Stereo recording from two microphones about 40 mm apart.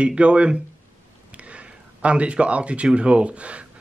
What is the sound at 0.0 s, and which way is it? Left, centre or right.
A man's voice, right.